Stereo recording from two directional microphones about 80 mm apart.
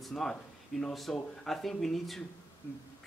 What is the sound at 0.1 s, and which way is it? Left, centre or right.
Speech, centre.